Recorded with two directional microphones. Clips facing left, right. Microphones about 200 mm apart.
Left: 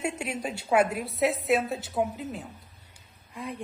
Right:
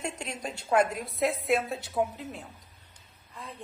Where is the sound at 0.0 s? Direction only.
10° left (ahead or behind).